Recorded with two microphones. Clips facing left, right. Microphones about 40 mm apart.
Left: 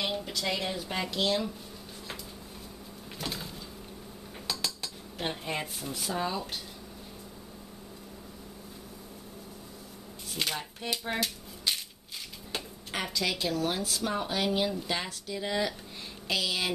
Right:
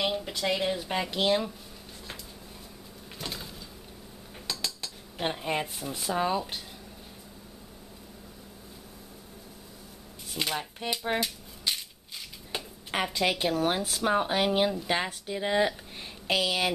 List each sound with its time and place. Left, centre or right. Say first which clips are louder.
0.0 s a sound: right 3 dB; centre
0.3 s speech: right 4 dB; centre
3.2 s a sound: left 1 dB; centre
4.5 s cutlery: even; centre
5.2 s speech: right 4 dB; centre
10.3 s speech: right 2 dB; centre
10.9 s cutlery: right 2 dB; centre
12.5 s a sound: right 1 dB; centre
12.9 s speech: right 4 dB; right